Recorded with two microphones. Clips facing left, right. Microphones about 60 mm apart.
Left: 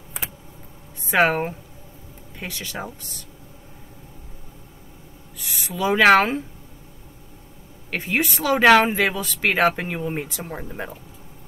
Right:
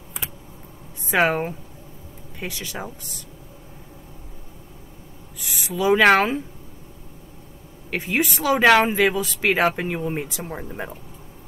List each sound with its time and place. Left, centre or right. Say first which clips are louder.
1.0 s speech: left 1 dB; centre
2.4 s speech: even; centre
5.4 s speech: right 2 dB; centre
7.9 s speech: even; centre